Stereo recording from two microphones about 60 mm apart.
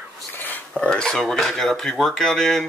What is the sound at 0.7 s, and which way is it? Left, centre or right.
Speech, centre.